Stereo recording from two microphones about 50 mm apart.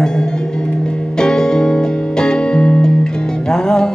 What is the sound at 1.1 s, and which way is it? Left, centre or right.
Music, centre.